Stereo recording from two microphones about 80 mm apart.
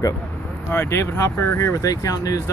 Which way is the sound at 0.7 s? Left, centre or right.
Left.